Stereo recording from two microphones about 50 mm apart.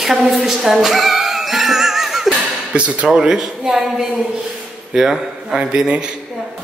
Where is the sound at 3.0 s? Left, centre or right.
Centre.